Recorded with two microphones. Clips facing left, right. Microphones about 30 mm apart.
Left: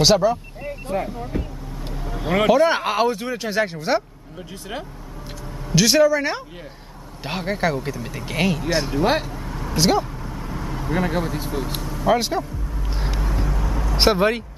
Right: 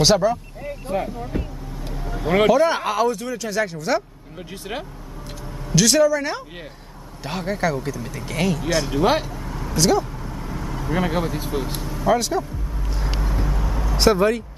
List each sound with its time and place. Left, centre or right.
0.0 s vehicle: centre
2.5 s speech: centre
4.4 s speech: centre
5.8 s speech: centre
9.0 s vehicle: centre
9.8 s speech: left
10.1 s vehicle: centre
12.1 s speech: left
13.2 s vehicle: centre
13.9 s speech: left